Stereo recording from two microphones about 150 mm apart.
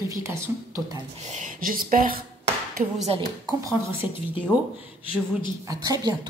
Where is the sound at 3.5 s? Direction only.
20° right (ahead or behind).